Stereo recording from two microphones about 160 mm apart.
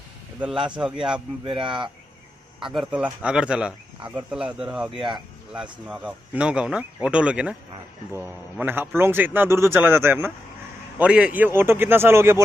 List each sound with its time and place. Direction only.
0.4 s speech: 5° right (ahead or behind)
1.4 s speech: 30° right (ahead or behind)
2.6 s speech: centre (ahead or behind)